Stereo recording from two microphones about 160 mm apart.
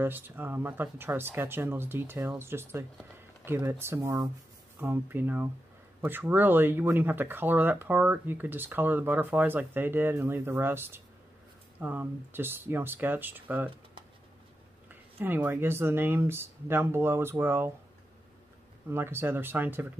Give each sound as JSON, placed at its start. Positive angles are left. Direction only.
{"t": 0.0, "sound": "speech", "side_deg": -10}
{"t": 14.9, "sound": "speech", "side_deg": -10}
{"t": 18.9, "sound": "speech", "side_deg": -15}